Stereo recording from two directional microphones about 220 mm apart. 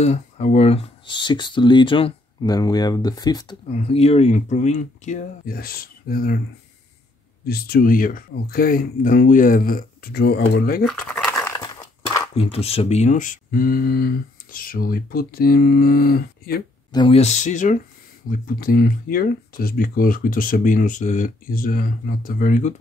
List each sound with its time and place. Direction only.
0.0 s speech: 30° left (ahead or behind)
7.4 s speech: 45° left (ahead or behind)
10.9 s speech: 5° left (ahead or behind); by 16.6 s 45° left (ahead or behind)
16.9 s speech: 25° left (ahead or behind)